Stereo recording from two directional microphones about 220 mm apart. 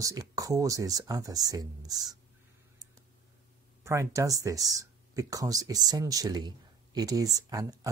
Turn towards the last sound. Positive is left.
turn(degrees=-15)  # may be behind; listen again after turning